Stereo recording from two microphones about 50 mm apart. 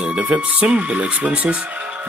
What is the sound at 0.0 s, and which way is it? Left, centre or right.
Speech, right.